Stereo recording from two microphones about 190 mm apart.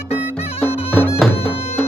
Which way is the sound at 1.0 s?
Centre (ahead or behind).